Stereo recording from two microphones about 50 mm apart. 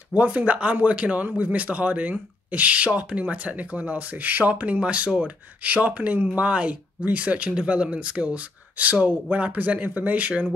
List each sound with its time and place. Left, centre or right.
0.1 s speech: right